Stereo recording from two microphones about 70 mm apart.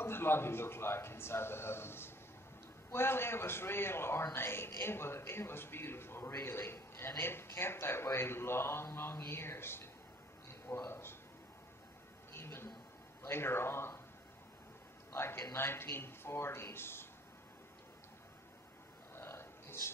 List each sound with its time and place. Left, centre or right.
0.0 s a man's voice: left
10.9 s a man's voice: left
12.3 s a sound: left
13.3 s a man's voice: left
15.1 s a man's voice: left
19.1 s a sound: left